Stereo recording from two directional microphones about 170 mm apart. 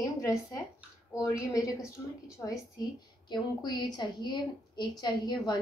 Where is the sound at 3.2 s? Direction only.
25° left (ahead or behind).